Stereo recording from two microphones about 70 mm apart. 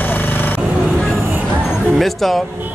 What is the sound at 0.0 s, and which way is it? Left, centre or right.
Vehicle, left.